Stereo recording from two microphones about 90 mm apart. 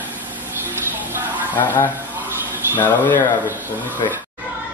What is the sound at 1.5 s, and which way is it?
Speech, 20° left (ahead or behind).